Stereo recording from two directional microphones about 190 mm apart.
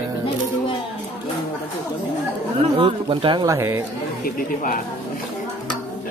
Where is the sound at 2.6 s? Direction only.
25° right (ahead or behind).